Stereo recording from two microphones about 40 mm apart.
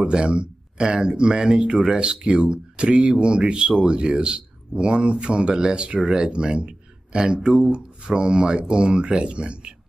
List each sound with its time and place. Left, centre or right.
0.0 s speech: right